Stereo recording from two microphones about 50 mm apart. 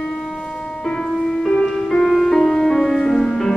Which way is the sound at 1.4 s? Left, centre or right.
Centre.